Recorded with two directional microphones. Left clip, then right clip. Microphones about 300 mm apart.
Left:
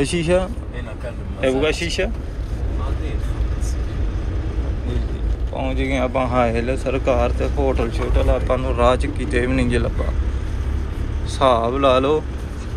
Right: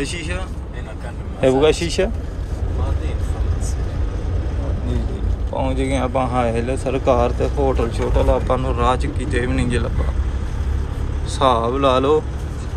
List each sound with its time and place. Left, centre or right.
0.0 s speech: centre
1.4 s speech: centre
5.6 s speech: centre
11.3 s speech: centre